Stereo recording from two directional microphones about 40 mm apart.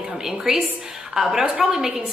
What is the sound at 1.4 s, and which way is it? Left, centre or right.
Speech, centre.